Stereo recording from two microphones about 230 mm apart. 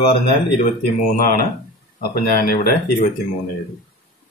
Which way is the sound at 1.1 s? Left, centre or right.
Left.